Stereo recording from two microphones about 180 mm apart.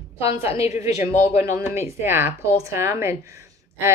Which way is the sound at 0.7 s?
15° right (ahead or behind).